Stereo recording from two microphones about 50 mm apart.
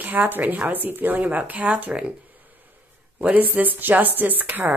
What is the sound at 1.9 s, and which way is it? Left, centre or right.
Speech, right.